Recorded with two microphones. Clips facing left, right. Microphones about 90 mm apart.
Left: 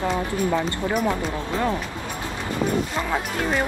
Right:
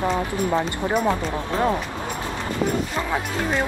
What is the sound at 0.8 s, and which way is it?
Speech, 20° right (ahead or behind).